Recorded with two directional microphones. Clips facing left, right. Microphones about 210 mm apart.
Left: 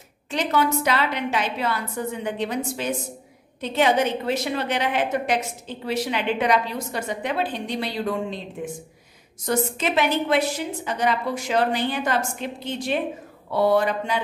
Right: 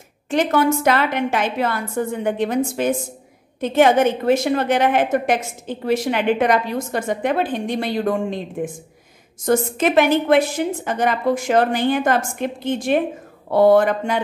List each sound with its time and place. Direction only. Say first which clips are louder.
0.3 s a woman's voice: right 5 dB; 50° right (ahead or behind)